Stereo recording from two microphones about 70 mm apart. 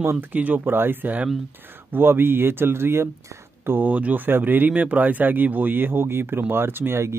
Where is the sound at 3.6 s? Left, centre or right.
Right.